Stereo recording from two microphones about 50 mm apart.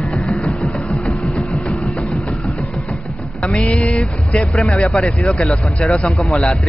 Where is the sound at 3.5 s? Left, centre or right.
Left.